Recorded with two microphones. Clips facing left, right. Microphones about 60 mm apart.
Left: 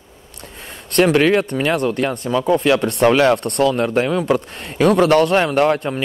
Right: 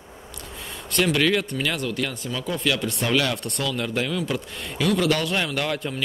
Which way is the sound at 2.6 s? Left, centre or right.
Left.